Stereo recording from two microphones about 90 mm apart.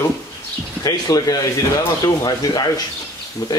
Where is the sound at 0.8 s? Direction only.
45° left (ahead or behind).